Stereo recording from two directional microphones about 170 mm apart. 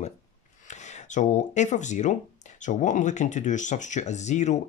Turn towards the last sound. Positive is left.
turn(degrees=45)  # may be behind; listen again after turning